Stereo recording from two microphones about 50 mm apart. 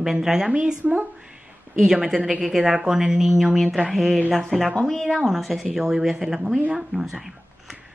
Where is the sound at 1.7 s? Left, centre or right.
Right.